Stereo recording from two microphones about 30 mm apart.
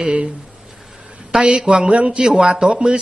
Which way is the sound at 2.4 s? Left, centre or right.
Right.